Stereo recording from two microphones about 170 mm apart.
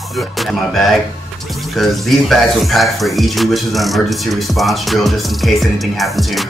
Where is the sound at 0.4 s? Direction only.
Centre (ahead or behind).